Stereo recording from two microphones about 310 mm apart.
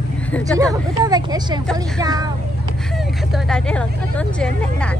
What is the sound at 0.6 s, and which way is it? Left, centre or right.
Speech, centre.